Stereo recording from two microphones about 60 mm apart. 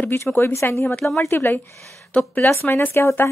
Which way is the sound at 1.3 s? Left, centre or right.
Left.